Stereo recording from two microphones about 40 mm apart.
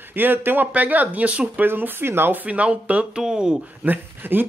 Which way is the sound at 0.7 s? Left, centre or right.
Right.